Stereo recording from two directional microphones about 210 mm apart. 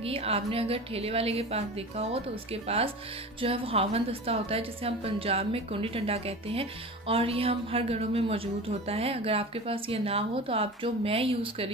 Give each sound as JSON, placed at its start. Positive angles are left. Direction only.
{"t": 0.0, "sound": "a woman's voice", "side_deg": -30}